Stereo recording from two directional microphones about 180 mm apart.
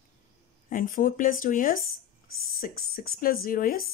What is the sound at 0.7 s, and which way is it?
Speech, 50° left (ahead or behind).